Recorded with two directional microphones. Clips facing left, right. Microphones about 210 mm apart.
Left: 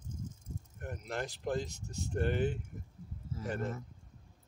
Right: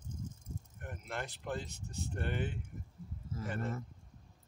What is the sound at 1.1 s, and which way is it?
Speech, 40° left (ahead or behind).